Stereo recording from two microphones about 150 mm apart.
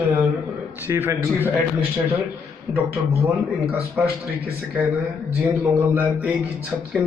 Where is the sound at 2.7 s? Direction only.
15° right (ahead or behind).